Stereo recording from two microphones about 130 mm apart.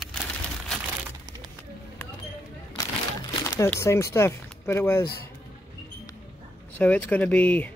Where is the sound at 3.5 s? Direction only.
20° left (ahead or behind).